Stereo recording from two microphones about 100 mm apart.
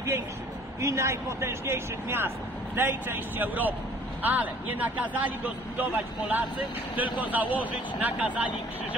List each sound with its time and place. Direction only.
0.7 s speech: 30° right (ahead or behind)